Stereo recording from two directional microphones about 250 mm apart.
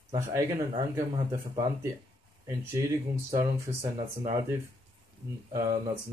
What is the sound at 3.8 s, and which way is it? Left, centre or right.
Speech, centre.